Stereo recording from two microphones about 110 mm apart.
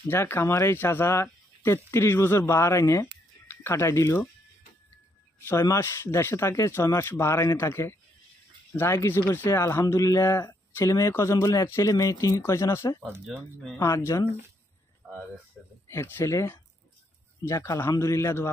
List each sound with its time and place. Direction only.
0.0 s speech: 20° left (ahead or behind)
5.5 s speech: 25° left (ahead or behind)
13.3 s speech: centre (ahead or behind)
13.7 s speech: 30° left (ahead or behind)
15.6 s speech: centre (ahead or behind)
15.9 s speech: 25° left (ahead or behind)